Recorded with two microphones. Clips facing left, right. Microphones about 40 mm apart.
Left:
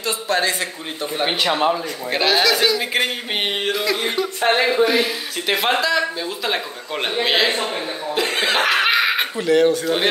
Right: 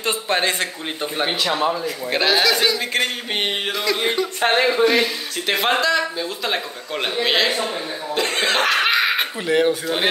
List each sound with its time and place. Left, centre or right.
0.0 s speech: right
1.2 s a sound: centre
2.0 s speech: centre
2.9 s a sound: centre
4.0 s speech: centre
8.1 s cough: centre
9.5 s speech: centre